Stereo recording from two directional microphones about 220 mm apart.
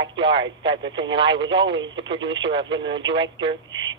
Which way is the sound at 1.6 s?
55° right (ahead or behind).